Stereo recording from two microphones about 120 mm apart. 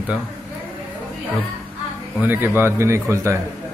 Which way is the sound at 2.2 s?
15° right (ahead or behind).